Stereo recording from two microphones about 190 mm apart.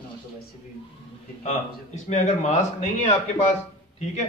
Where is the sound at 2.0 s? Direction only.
40° left (ahead or behind).